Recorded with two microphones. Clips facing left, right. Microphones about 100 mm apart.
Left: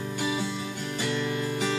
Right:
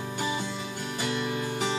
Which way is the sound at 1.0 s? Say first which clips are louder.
Left 1 dB; 15° right (ahead or behind).